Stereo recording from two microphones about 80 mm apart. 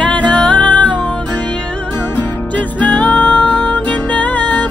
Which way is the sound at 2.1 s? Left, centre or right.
Centre.